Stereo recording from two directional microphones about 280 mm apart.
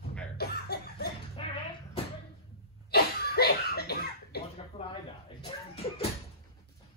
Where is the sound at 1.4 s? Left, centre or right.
Centre.